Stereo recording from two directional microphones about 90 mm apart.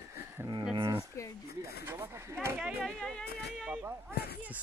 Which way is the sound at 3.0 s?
10° left (ahead or behind).